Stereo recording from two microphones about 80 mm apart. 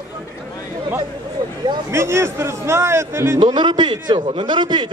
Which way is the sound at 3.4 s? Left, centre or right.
Right.